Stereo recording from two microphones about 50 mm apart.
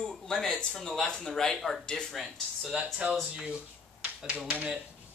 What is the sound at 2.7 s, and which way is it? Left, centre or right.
Speech, right.